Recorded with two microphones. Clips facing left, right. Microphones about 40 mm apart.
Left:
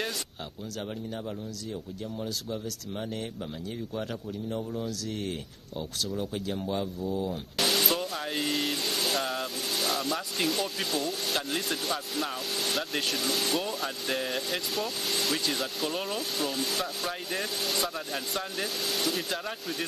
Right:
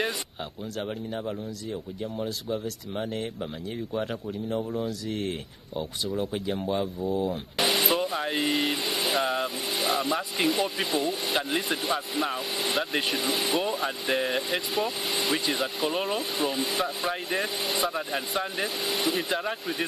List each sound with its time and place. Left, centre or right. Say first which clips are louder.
0.7 s speech: right 4 dB; centre